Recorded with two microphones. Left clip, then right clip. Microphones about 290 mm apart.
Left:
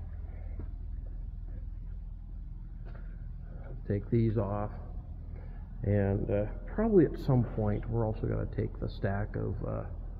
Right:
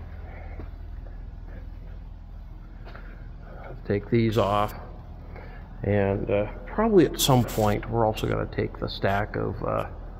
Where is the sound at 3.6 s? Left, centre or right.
Centre.